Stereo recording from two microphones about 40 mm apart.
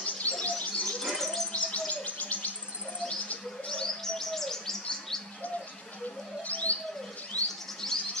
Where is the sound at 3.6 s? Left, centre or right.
Centre.